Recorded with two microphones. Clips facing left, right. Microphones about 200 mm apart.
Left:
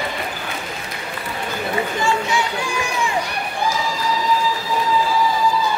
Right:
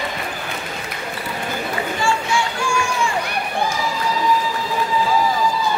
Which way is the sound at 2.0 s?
20° left (ahead or behind).